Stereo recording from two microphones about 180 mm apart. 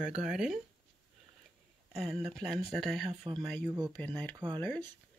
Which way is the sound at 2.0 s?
Centre (ahead or behind).